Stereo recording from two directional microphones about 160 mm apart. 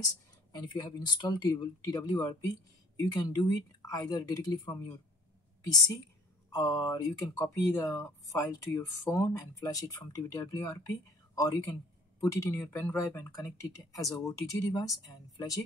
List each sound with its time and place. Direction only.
0.5 s speech: 25° left (ahead or behind)
6.5 s speech: 20° left (ahead or behind)